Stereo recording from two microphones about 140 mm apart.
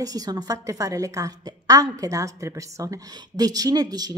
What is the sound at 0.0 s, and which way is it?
A woman's voice, 25° right (ahead or behind).